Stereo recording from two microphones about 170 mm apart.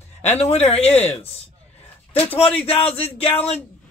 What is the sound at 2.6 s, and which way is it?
Speech, 35° left (ahead or behind).